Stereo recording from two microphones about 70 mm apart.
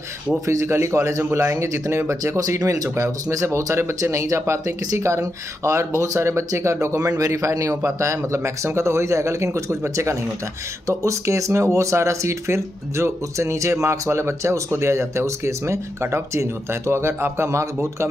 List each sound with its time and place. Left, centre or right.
0.5 s speech: right
2.9 s speech: right